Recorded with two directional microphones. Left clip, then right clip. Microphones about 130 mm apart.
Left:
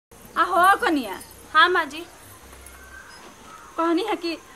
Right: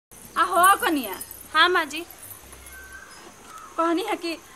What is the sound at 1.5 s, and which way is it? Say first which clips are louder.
Speech: left 2 dB; 5° right (ahead or behind).